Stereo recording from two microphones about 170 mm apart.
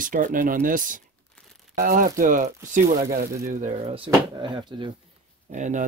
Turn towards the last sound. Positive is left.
turn(degrees=-45)  # may be behind; listen again after turning